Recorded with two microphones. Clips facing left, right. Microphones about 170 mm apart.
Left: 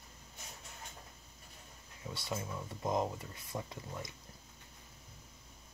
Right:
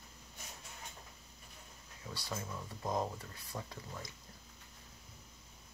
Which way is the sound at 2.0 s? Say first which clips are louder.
Left 3 dB; 20° left (ahead or behind).